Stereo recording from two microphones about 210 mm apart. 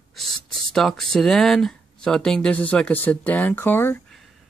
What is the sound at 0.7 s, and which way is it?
Speech, centre (ahead or behind).